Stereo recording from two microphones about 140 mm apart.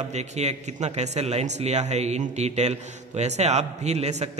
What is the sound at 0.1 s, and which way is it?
A man's voice, 50° right (ahead or behind).